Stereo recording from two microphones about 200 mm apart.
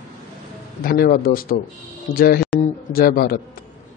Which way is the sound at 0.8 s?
45° left (ahead or behind).